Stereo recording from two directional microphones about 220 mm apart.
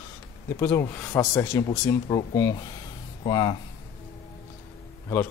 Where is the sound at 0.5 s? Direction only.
10° left (ahead or behind).